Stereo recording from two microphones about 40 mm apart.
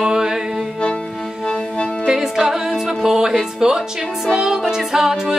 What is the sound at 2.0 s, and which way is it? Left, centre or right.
Music, centre.